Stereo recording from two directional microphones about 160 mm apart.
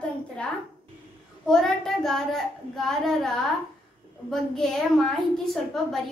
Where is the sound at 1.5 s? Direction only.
Centre (ahead or behind).